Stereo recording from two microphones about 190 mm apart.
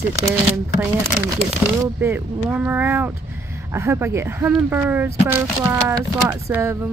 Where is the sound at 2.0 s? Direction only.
10° right (ahead or behind).